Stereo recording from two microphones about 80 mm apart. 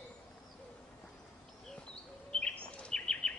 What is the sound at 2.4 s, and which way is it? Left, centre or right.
Bird vocalization, centre.